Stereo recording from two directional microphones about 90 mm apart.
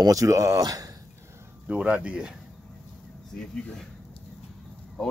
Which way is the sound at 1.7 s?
15° right (ahead or behind).